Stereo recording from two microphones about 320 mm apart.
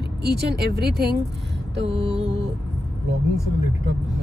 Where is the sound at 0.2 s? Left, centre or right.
Right.